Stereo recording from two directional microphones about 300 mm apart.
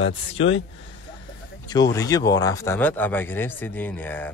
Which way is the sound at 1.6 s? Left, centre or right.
Centre.